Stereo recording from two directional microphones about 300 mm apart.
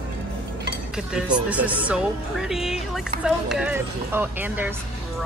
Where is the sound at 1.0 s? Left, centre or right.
Centre.